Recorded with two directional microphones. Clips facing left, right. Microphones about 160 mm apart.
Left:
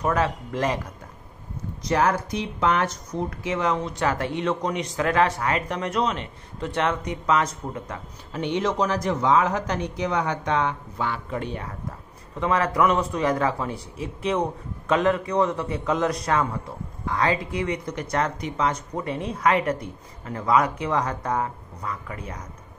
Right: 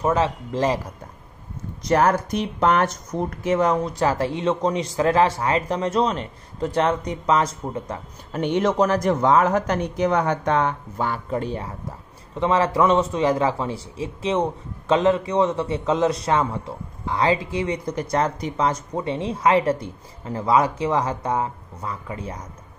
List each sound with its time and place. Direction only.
0.0 s speech: 25° right (ahead or behind)
1.9 s speech: 45° right (ahead or behind)
3.4 s a man's voice: 40° right (ahead or behind)
8.3 s speech: 50° right (ahead or behind); by 22.4 s 30° right (ahead or behind)